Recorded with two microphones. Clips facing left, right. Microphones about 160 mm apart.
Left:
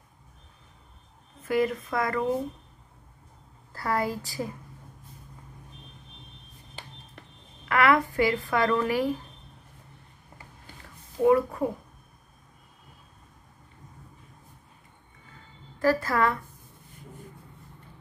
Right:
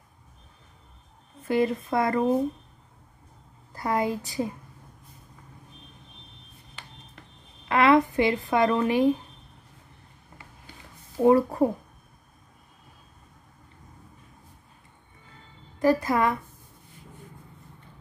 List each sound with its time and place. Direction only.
1.4 s speech: 25° right (ahead or behind)
3.7 s speech: 20° right (ahead or behind)
7.6 s speech: 20° right (ahead or behind)
11.2 s a child's voice: 35° right (ahead or behind)
15.8 s a woman's voice: 20° right (ahead or behind)